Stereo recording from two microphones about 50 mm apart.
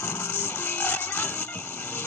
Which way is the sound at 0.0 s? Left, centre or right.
Left.